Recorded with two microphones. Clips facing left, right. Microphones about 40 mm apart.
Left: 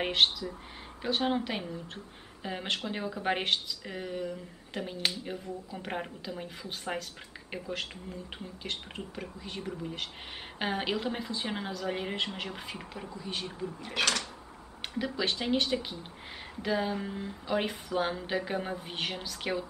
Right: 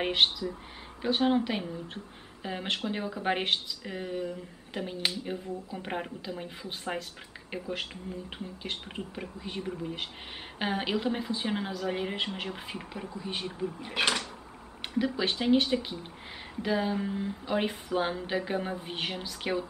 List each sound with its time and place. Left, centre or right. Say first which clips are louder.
0.0 s speech: right 1 dB; centre
15.0 s speech: right 3 dB; centre